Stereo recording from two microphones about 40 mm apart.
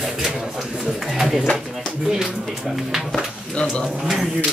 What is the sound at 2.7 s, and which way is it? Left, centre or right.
Speech, centre.